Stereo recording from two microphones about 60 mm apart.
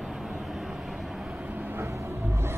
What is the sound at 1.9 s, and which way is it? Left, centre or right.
Music, right.